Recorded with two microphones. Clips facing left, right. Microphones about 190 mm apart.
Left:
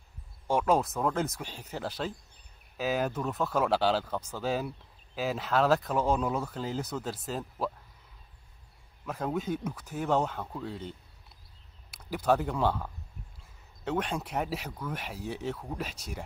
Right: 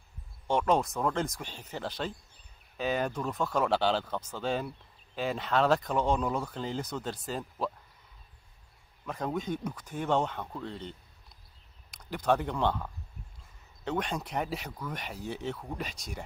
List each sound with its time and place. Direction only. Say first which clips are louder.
0.5 s speech: left 1 dB; 5° left (ahead or behind)
9.0 s speech: left 1 dB; 5° left (ahead or behind)